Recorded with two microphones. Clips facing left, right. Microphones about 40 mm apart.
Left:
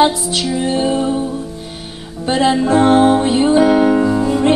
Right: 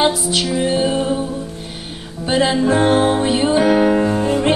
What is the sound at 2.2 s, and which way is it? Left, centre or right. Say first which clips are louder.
Music: left 1 dB; centre.